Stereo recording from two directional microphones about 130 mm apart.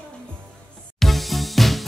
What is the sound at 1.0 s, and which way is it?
Music, centre (ahead or behind).